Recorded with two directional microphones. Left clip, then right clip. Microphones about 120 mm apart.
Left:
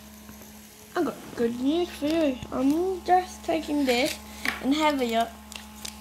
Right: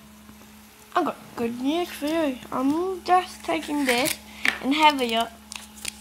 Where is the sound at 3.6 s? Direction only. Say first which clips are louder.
Right 2 dB; 45° right (ahead or behind).